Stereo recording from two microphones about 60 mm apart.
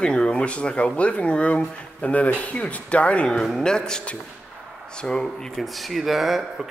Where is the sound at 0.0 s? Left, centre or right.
Centre.